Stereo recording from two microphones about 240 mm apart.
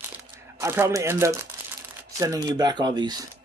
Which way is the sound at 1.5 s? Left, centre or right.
Centre.